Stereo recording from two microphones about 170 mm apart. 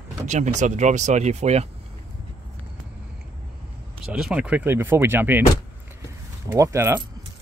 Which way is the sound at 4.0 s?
5° right (ahead or behind).